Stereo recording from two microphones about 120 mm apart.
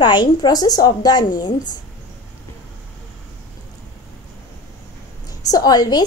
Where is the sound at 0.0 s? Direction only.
40° left (ahead or behind).